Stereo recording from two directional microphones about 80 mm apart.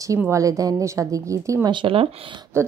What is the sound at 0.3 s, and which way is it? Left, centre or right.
A woman's voice, right.